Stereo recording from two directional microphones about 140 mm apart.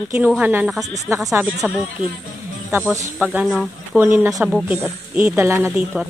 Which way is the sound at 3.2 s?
10° right (ahead or behind).